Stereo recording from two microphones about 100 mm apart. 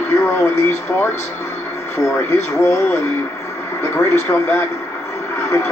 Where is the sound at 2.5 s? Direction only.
25° left (ahead or behind).